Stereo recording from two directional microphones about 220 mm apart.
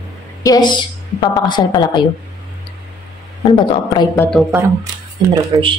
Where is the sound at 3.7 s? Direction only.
20° left (ahead or behind).